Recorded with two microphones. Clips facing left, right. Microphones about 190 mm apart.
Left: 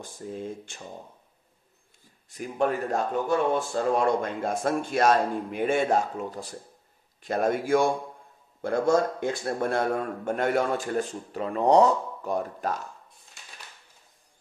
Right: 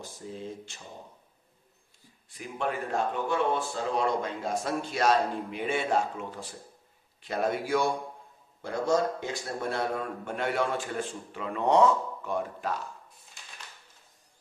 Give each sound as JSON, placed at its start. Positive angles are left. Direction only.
{"t": 0.0, "sound": "a man's voice", "side_deg": 50}
{"t": 2.2, "sound": "a man's voice", "side_deg": 45}